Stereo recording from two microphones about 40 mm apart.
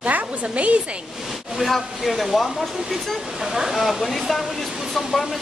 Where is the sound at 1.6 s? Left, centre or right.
Centre.